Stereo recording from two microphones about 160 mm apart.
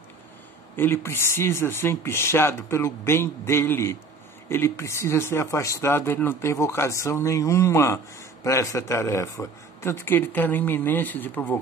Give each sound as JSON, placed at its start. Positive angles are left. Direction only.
{"t": 0.7, "sound": "speech", "side_deg": 15}